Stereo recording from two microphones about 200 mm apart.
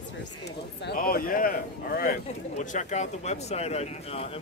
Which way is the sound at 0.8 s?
45° left (ahead or behind).